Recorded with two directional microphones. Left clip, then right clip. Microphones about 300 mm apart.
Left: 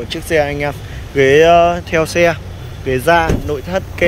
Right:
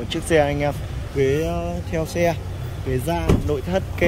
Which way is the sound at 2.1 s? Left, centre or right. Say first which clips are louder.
Left 8 dB; centre.